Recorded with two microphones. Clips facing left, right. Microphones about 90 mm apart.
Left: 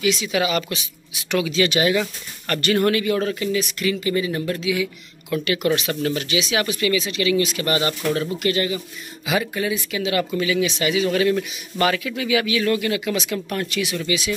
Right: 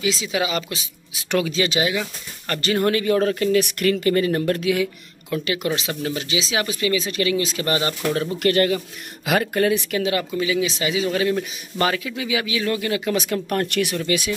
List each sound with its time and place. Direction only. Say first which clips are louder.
0.0 s speech: left 2 dB; 25° right (ahead or behind)
1.3 s speech: right 1 dB; 40° right (ahead or behind)
2.4 s speech: left 1 dB; 25° right (ahead or behind); by 3.4 s 40° right (ahead or behind)
3.5 s speech: right 4 dB; 55° right (ahead or behind)
5.3 s speech: left 3 dB; 25° right (ahead or behind)
7.1 s speech: left 1 dB; 40° right (ahead or behind)
7.3 s speech: left 1 dB; 30° right (ahead or behind)
8.4 s speech: right 4 dB; 55° right (ahead or behind)
10.4 s speech: left 1 dB; 25° right (ahead or behind)
13.1 s speech: right 2 dB; 45° right (ahead or behind)